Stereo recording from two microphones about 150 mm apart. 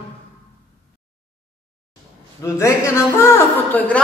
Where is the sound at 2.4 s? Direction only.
20° left (ahead or behind).